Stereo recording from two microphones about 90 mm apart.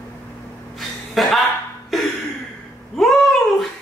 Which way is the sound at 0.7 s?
Centre (ahead or behind).